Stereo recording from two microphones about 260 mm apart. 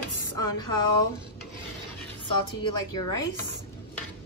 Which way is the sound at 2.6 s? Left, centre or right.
Centre.